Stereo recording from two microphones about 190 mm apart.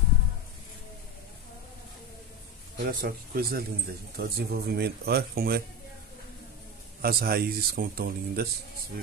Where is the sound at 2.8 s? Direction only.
50° right (ahead or behind).